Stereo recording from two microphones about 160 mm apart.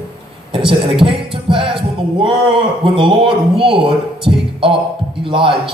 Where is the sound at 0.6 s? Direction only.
30° right (ahead or behind).